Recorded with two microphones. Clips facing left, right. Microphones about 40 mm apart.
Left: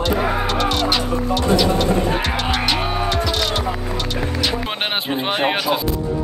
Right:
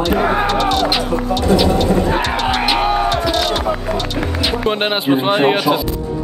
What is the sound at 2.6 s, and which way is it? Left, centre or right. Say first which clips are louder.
Music: right 5 dB; centre.